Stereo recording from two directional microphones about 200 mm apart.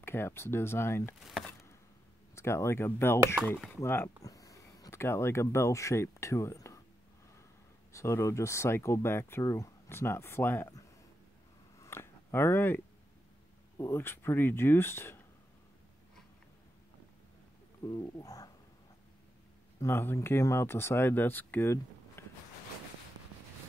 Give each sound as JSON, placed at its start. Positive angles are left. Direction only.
{"t": 0.0, "sound": "speech", "side_deg": 10}
{"t": 2.3, "sound": "speech", "side_deg": 15}
{"t": 3.3, "sound": "speech", "side_deg": 0}
{"t": 3.7, "sound": "speech", "side_deg": 10}
{"t": 7.9, "sound": "speech", "side_deg": 15}
{"t": 11.8, "sound": "a sound", "side_deg": 10}
{"t": 13.7, "sound": "speech", "side_deg": 10}
{"t": 17.8, "sound": "speech", "side_deg": 15}
{"t": 19.8, "sound": "speech", "side_deg": 10}